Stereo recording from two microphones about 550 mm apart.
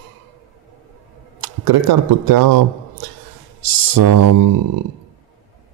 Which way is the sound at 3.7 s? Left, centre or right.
Right.